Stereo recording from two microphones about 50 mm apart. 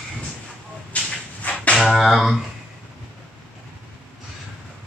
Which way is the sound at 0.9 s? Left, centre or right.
Left.